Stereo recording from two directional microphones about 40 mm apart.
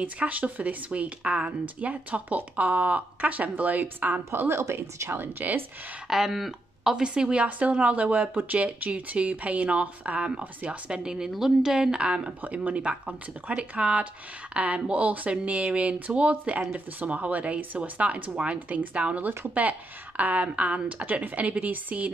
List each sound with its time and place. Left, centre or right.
0.0 s speech: right
4.3 s a woman's voice: right
6.0 s speech: centre
6.9 s a woman's voice: right
7.4 s a woman's voice: right; by 12.0 s centre
12.0 s a woman's voice: right